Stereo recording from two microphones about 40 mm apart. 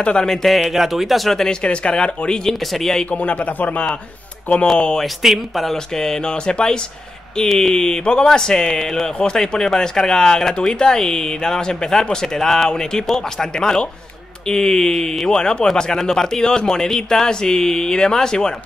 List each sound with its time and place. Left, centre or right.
0.0 s speech: left
0.3 s speech: centre
0.7 s a man's voice: centre
1.3 s speech: centre
1.6 s speech: left
2.7 s speech: centre
3.1 s a man's voice: left
5.0 s a man's voice: centre
5.7 s speech: centre
15.3 s speech: left